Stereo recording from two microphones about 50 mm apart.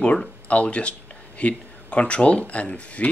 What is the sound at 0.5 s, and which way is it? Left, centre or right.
Speech, left.